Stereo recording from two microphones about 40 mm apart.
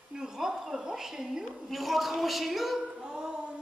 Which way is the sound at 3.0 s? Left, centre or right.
Centre.